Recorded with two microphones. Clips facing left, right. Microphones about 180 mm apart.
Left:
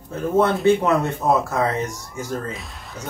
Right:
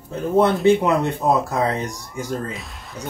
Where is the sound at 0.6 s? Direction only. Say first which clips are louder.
Right 1 dB; 15° right (ahead or behind).